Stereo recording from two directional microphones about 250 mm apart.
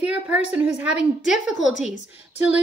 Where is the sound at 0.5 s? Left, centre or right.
Centre.